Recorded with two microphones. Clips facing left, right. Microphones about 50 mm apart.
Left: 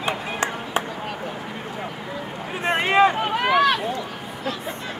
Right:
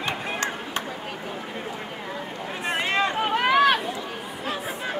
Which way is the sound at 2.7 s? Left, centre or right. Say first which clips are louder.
Left 7 dB; centre.